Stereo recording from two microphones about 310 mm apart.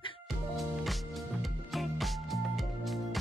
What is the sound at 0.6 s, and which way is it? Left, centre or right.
Music, centre.